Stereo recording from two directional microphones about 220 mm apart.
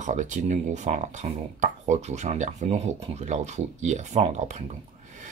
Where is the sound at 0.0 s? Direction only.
35° right (ahead or behind).